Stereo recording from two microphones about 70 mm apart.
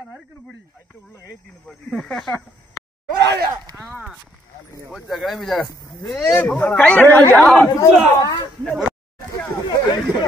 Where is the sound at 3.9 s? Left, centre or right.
Centre.